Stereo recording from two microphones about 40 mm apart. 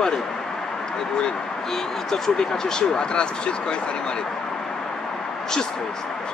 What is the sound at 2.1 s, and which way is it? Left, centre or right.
Speech, centre.